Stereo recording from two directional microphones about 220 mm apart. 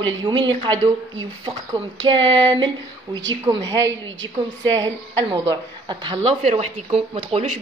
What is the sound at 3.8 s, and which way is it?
Speech, 55° right (ahead or behind).